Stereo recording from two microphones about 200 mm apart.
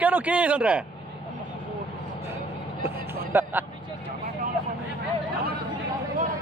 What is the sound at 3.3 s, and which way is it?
Speech, 10° right (ahead or behind).